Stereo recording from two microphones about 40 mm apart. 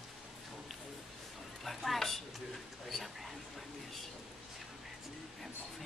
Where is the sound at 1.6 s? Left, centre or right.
Centre.